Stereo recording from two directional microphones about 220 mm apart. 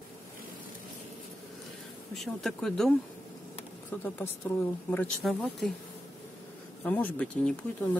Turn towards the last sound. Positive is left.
turn(degrees=5)  # may be behind; listen again after turning